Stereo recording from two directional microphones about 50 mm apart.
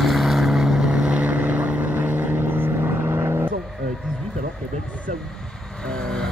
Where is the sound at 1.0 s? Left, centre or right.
Right.